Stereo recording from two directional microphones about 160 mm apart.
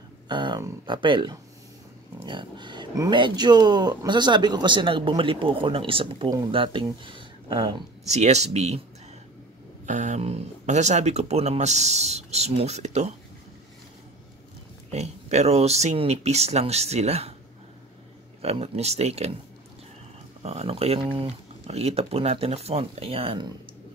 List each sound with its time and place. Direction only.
0.3 s speech: 25° right (ahead or behind)
8.1 s speech: 45° right (ahead or behind)
9.8 s speech: 50° right (ahead or behind)
14.9 s speech: 45° right (ahead or behind)
18.4 s speech: 40° right (ahead or behind)
20.4 s speech: 40° right (ahead or behind)